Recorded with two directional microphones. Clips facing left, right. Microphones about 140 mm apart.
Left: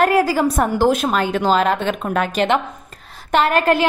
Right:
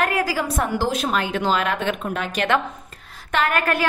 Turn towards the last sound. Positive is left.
turn(degrees=25)  # may be behind; listen again after turning